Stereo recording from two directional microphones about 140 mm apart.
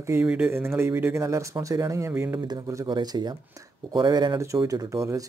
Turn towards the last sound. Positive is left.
turn(degrees=-20)  # may be behind; listen again after turning